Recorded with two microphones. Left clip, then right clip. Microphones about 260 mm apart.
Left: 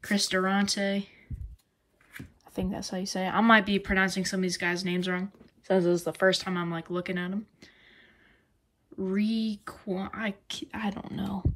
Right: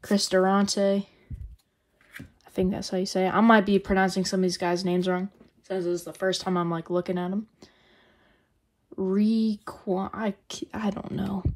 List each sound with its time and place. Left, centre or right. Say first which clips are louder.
0.0 s speech: right 4 dB; centre
3.0 s speech: right 4 dB; right
11.1 s speech: right 2 dB; left